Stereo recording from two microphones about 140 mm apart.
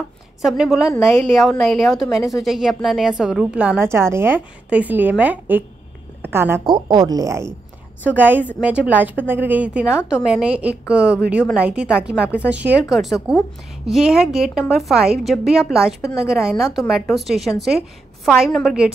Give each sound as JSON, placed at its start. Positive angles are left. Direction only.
{"t": 0.4, "sound": "a woman's voice", "side_deg": -5}
{"t": 0.8, "sound": "a woman's voice", "side_deg": 20}
{"t": 1.5, "sound": "a woman's voice", "side_deg": 0}
{"t": 6.6, "sound": "a woman's voice", "side_deg": -30}